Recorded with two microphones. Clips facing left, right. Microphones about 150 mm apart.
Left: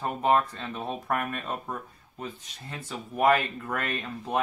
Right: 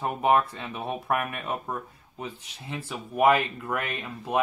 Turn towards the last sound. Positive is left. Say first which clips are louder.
# even
turn(degrees=-10)  # may be behind; listen again after turning